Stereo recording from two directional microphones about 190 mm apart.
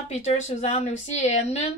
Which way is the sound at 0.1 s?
40° left (ahead or behind).